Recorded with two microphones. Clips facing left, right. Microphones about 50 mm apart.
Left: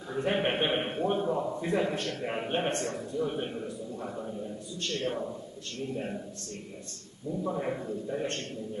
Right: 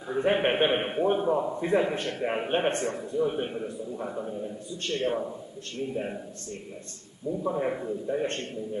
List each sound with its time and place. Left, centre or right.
0.1 s a man's voice: right
7.2 s a man's voice: centre